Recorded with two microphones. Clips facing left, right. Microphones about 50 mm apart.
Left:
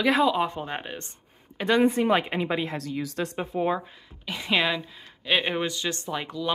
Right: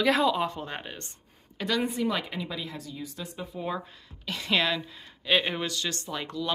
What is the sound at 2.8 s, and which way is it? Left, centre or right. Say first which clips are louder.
Speech: left 9 dB; left.